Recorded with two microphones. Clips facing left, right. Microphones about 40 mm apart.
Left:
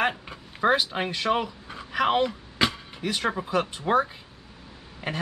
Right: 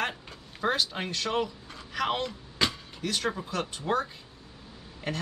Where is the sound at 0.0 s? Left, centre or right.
Centre.